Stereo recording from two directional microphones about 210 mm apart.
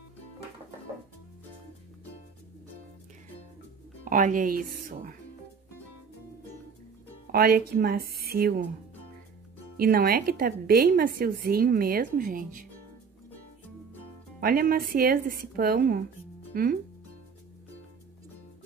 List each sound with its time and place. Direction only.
4.0 s speech: 40° right (ahead or behind)
7.3 s a woman's voice: 45° right (ahead or behind)
9.8 s a woman's voice: 45° right (ahead or behind)
14.4 s a woman's voice: 45° right (ahead or behind)